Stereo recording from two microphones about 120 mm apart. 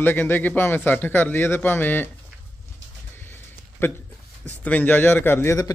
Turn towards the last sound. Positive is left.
turn(degrees=25)  # may be behind; listen again after turning